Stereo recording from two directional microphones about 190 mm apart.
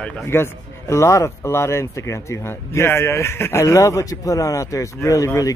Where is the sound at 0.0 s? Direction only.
15° left (ahead or behind).